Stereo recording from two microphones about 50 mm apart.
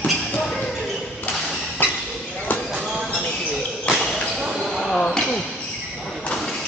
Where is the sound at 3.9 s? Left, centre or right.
Centre.